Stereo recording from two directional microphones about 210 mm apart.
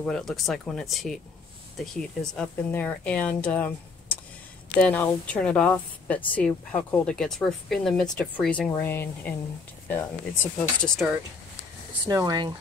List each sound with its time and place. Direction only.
0.0 s speech: centre (ahead or behind)
12.1 s speech: 15° right (ahead or behind)